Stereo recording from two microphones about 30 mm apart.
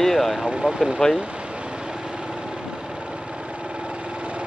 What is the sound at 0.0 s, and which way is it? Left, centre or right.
Vehicle, centre.